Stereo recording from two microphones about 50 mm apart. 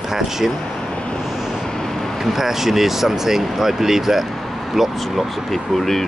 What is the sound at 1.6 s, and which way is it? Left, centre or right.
Speech, centre.